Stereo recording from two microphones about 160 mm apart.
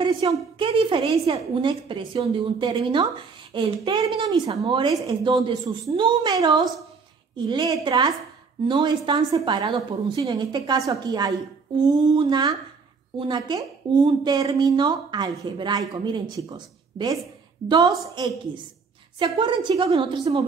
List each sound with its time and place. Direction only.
0.0 s a woman's voice: 30° right (ahead or behind)